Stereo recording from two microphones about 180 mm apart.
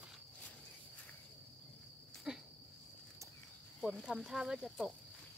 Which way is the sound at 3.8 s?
Centre (ahead or behind).